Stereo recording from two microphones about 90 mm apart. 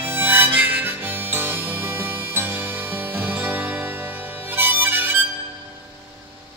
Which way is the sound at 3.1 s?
20° right (ahead or behind).